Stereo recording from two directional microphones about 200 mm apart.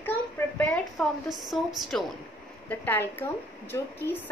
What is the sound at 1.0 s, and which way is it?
A woman's voice, centre (ahead or behind).